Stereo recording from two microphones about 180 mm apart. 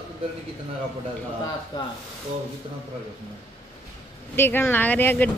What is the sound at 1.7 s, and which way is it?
Speech, 25° left (ahead or behind).